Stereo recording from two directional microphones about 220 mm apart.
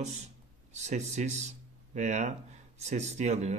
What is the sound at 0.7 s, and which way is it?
Speech, 30° right (ahead or behind).